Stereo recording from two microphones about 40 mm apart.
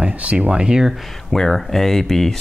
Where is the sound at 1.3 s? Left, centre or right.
Centre.